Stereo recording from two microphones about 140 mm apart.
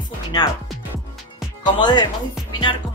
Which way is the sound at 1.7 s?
30° left (ahead or behind).